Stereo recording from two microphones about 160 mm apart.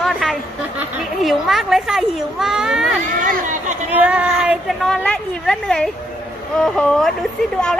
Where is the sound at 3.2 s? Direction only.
55° right (ahead or behind).